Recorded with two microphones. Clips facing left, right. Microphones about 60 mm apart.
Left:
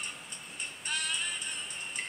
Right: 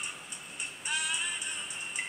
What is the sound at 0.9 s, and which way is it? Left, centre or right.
Music, centre.